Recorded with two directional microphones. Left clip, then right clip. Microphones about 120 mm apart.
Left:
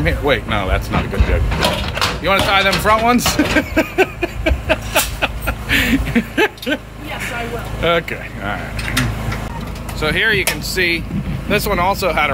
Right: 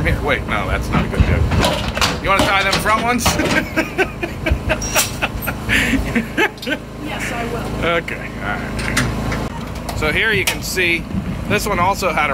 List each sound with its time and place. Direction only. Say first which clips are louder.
0.0 s speech: left 2 dB; 20° left (ahead or behind)
1.6 s speech: even; 10° right (ahead or behind)
2.2 s speech: left 2 dB; 20° left (ahead or behind)
3.5 s a sound: left 2 dB; 25° left (ahead or behind)
7.8 s speech: left 3 dB; 20° left (ahead or behind)
9.9 s speech: left 1 dB; 5° left (ahead or behind)